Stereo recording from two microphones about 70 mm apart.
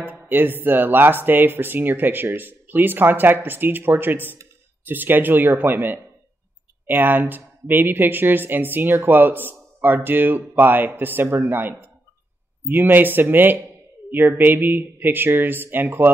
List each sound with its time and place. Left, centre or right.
0.3 s speech: right